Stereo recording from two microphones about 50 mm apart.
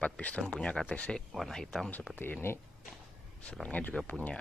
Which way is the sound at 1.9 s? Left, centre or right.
Left.